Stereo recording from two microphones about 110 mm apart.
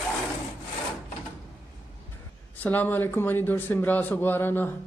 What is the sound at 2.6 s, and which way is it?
Mantra, 15° left (ahead or behind).